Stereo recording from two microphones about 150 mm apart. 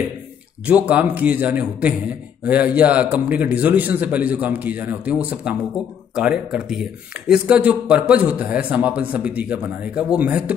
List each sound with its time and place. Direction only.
0.7 s speech: 10° right (ahead or behind)